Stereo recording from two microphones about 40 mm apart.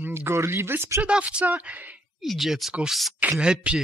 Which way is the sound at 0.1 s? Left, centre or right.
Right.